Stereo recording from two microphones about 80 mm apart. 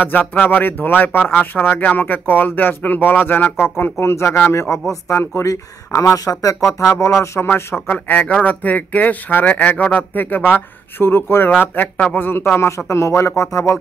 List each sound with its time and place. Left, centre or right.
0.0 s speech: left
7.7 s speech: left